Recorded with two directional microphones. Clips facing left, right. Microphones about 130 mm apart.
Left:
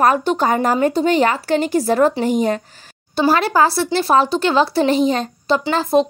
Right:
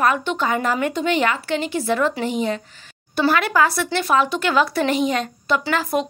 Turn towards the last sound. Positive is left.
turn(degrees=30)  # may be behind; listen again after turning